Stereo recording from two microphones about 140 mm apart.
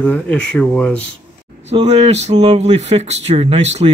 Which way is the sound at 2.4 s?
45° right (ahead or behind).